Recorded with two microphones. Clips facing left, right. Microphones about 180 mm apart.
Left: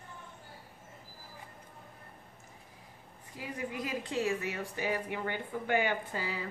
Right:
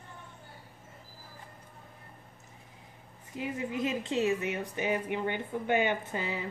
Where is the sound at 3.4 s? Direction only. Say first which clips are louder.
Right 5 dB; 20° right (ahead or behind).